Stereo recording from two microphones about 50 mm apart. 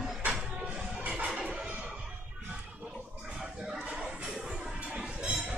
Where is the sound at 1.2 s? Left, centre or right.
Right.